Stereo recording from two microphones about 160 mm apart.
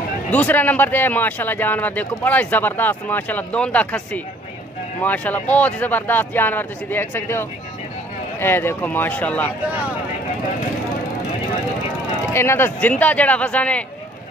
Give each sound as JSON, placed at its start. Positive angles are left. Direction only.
{"t": 0.3, "sound": "speech", "side_deg": 10}
{"t": 12.3, "sound": "speech", "side_deg": 15}